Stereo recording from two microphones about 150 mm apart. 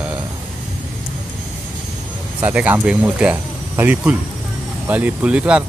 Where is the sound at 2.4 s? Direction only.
10° right (ahead or behind).